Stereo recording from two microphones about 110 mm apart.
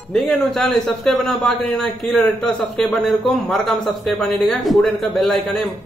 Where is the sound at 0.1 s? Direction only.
5° left (ahead or behind).